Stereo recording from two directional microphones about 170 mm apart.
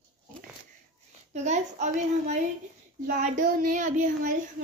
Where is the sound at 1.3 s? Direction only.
45° right (ahead or behind).